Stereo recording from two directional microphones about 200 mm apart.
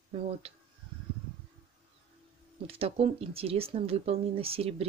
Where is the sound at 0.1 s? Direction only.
30° right (ahead or behind).